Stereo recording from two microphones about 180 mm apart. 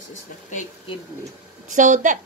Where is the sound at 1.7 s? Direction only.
45° right (ahead or behind).